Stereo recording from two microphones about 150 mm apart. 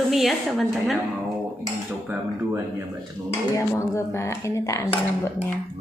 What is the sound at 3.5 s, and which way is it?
Speech, 20° left (ahead or behind).